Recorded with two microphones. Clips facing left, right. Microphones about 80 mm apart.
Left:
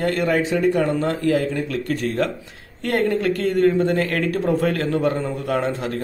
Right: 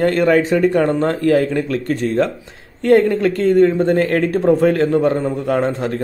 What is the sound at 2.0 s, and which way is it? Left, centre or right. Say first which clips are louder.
Speech: right 5 dB; right.